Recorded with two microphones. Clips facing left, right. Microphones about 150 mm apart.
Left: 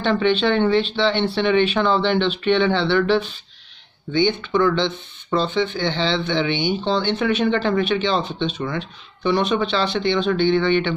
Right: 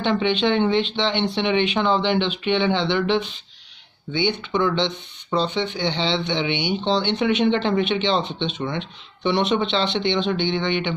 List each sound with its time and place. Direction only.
0.0 s speech: 15° right (ahead or behind)